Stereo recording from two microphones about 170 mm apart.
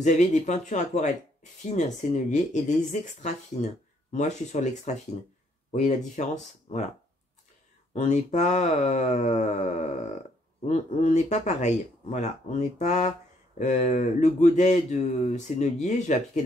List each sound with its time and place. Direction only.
0.0 s speech: 45° left (ahead or behind)
3.6 s speech: 35° left (ahead or behind)
4.1 s speech: 45° left (ahead or behind)
7.9 s speech: 45° left (ahead or behind)